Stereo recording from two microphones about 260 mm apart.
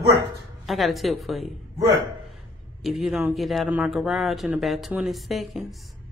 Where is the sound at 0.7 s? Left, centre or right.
Centre.